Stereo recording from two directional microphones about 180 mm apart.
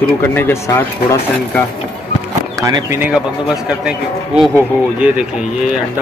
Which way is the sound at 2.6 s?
20° right (ahead or behind).